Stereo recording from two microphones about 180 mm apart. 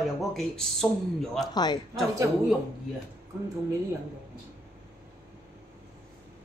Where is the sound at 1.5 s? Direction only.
25° left (ahead or behind).